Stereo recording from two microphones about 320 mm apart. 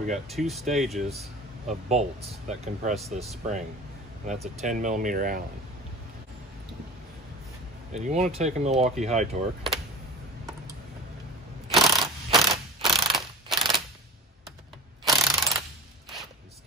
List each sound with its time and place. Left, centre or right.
0.3 s speech: centre
1.7 s speech: right
2.9 s speech: centre
4.6 s speech: right
7.9 s speech: right
11.7 s mechanisms: centre
15.0 s ratchet: centre